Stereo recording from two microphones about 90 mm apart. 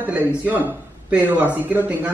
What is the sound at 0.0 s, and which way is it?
A man's voice, 15° right (ahead or behind).